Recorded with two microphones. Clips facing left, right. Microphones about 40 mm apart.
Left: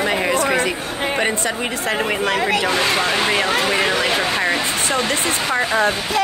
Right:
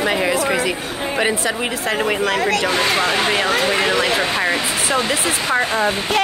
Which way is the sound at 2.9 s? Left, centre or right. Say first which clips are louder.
Right 1 dB; centre.